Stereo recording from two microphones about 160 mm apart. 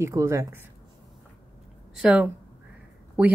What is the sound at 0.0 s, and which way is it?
Speech, 20° right (ahead or behind).